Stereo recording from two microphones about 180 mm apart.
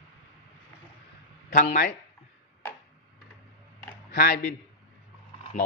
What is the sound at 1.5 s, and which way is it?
Speech, 45° left (ahead or behind).